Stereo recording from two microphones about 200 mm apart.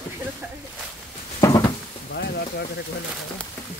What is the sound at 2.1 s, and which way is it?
Speech, 55° left (ahead or behind).